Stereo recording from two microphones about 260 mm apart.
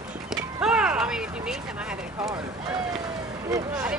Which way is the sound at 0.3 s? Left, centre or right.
Centre.